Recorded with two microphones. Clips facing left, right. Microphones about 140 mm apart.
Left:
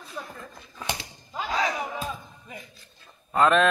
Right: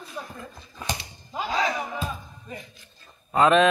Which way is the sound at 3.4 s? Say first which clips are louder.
Right 2 dB; centre (ahead or behind).